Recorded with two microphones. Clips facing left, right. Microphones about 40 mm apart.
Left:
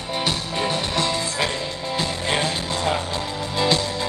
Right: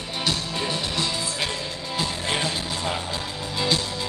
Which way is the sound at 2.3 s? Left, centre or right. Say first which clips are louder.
Left 5 dB; left.